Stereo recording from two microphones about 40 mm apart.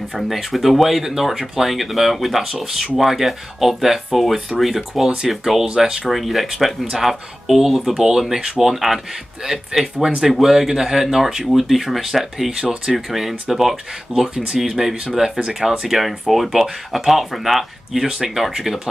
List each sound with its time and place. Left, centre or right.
0.3 s speech: centre
6.0 s speech: centre
14.3 s speech: right
14.6 s speech: centre
18.0 s speech: centre